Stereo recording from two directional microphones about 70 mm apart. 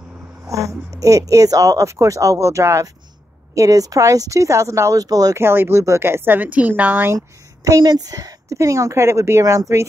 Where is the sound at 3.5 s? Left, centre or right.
Right.